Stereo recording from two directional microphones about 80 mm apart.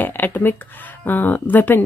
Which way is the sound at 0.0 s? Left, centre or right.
Left.